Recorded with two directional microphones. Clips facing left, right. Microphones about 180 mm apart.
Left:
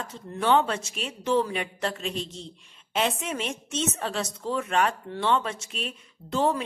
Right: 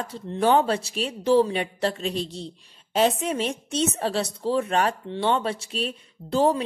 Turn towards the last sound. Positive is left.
turn(degrees=-35)  # may be behind; listen again after turning